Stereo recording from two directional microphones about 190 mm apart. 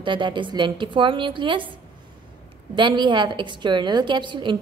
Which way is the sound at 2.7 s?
25° right (ahead or behind).